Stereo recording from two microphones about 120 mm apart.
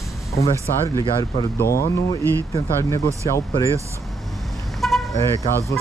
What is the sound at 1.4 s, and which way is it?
Speech, 25° left (ahead or behind).